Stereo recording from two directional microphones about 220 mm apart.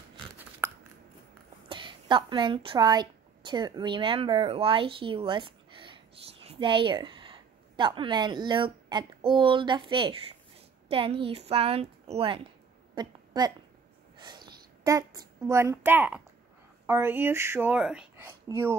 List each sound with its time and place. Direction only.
0.6 s biting: 10° right (ahead or behind)
1.7 s a woman's voice: 20° right (ahead or behind)
12.9 s a sound: 20° right (ahead or behind)
16.8 s a woman's voice: 10° right (ahead or behind)